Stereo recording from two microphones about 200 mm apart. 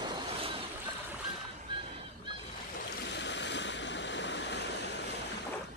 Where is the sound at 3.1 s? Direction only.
60° left (ahead or behind).